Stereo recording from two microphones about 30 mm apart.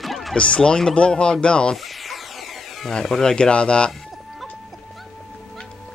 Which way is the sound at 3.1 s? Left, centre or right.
Left.